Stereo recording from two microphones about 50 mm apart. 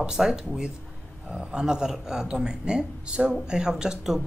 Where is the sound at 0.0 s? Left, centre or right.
Centre.